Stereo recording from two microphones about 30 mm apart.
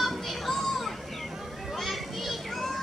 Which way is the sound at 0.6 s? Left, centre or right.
Centre.